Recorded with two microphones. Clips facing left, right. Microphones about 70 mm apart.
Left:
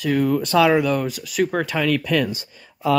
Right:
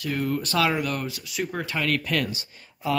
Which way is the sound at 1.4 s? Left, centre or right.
Left.